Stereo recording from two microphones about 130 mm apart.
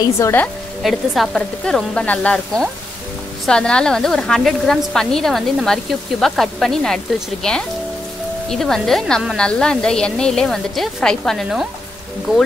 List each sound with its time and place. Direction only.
0.2 s speech: 15° left (ahead or behind)
0.8 s a woman's voice: centre (ahead or behind)